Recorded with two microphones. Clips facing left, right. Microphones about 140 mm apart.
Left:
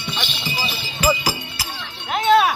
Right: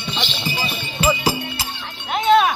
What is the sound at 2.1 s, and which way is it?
Wind chime, centre (ahead or behind).